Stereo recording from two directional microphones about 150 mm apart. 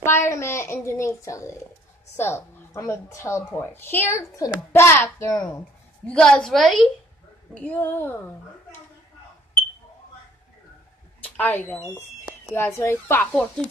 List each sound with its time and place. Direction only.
0.0 s a woman's voice: 15° left (ahead or behind)
6.0 s a woman's voice: 5° left (ahead or behind)
7.5 s a child's voice: 10° left (ahead or behind)
11.2 s speech: 10° left (ahead or behind)